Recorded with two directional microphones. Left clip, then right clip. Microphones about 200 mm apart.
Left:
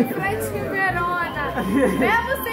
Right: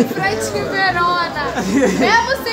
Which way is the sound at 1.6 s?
25° right (ahead or behind).